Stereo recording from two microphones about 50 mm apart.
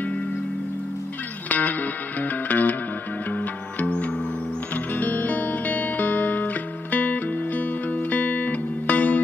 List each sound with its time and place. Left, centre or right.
1.5 s music: left